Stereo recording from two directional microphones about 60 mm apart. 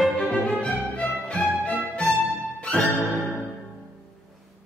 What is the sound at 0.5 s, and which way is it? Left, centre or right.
Music, left.